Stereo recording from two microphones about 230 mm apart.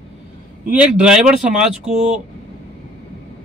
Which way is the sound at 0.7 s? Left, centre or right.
Centre.